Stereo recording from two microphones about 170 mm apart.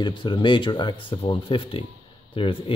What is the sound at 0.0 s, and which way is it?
Speech, 30° left (ahead or behind).